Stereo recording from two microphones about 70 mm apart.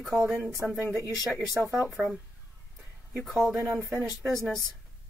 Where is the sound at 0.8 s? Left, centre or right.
Right.